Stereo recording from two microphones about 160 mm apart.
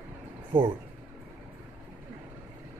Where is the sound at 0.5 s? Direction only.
35° right (ahead or behind).